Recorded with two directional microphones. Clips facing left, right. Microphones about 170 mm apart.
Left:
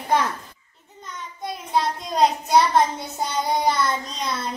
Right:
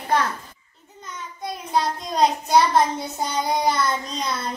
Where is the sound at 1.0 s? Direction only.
Centre (ahead or behind).